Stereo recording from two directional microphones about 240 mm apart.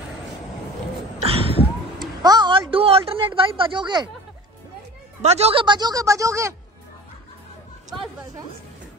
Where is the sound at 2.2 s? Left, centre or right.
Centre.